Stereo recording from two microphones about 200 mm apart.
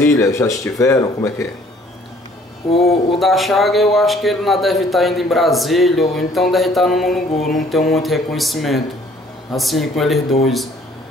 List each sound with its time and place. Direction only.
0.0 s speech: 15° left (ahead or behind)
2.7 s speech: 30° left (ahead or behind)
3.2 s a man's voice: centre (ahead or behind)